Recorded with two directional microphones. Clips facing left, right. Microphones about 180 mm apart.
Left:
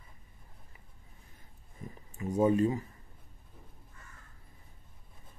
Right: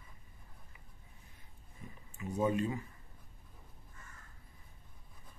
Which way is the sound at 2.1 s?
35° left (ahead or behind).